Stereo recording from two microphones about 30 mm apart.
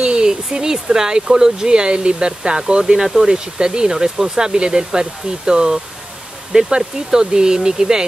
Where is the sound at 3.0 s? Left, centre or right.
Centre.